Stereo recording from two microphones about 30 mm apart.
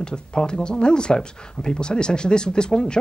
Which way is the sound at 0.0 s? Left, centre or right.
Left.